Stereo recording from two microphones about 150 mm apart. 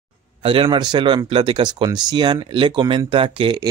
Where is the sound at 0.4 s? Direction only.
35° right (ahead or behind).